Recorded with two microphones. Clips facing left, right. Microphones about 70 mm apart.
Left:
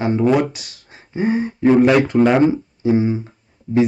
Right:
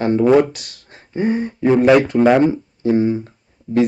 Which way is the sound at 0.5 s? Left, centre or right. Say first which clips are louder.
Right 1 dB; right.